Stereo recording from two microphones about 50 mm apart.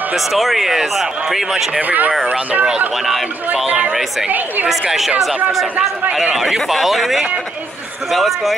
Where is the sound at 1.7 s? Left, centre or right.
Right.